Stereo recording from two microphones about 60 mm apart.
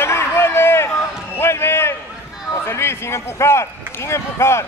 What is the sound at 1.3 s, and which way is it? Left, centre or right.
Basketball bounce, left.